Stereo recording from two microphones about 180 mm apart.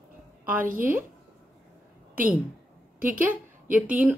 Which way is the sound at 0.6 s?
50° right (ahead or behind).